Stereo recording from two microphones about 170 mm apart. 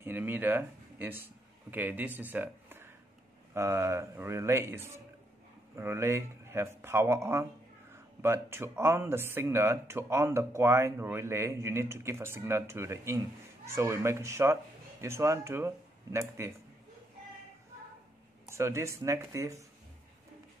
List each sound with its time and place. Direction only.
0.0 s speech: 10° right (ahead or behind)
18.5 s speech: 15° right (ahead or behind)